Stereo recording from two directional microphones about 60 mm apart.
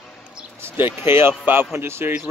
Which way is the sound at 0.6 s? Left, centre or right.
Right.